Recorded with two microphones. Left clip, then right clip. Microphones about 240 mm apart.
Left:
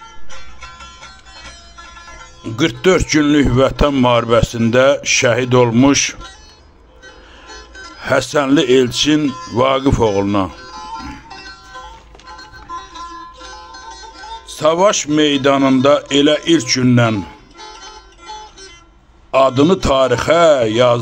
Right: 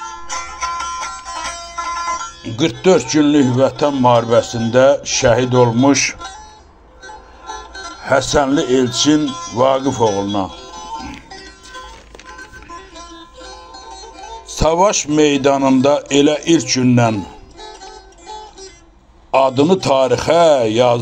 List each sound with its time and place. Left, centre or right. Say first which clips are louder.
0.3 s music: right 16 dB; right
2.4 s speech: left 1 dB; centre
8.0 s speech: right 1 dB; left
10.5 s music: even; centre
14.5 s speech: left 1 dB; centre
19.3 s speech: left 1 dB; centre